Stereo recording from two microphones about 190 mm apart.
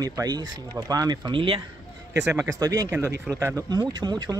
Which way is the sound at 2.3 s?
15° right (ahead or behind).